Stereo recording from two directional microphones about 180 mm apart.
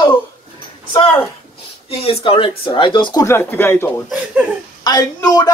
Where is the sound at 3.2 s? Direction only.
15° left (ahead or behind).